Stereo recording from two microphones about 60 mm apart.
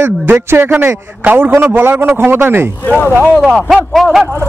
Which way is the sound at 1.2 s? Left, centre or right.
Right.